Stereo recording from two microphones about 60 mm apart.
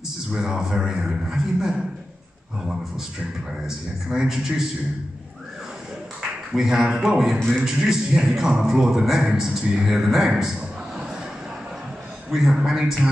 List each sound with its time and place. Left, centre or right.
0.3 s a man's voice: centre
3.6 s a man's voice: centre
6.5 s a man's voice: centre
12.3 s a man's voice: centre